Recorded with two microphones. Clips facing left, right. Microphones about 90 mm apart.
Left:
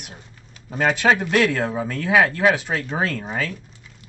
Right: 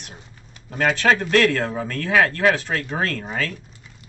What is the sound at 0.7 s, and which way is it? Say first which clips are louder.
Speech: even; 10° left (ahead or behind).